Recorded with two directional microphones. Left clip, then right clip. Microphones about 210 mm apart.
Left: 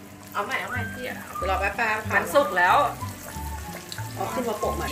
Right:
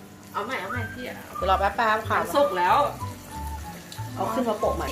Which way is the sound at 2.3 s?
10° left (ahead or behind).